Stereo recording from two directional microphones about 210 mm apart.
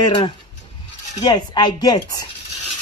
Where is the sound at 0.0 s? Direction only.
25° left (ahead or behind).